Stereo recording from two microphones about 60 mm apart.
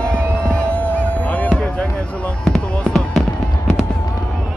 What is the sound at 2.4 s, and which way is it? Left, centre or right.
Fireworks, centre.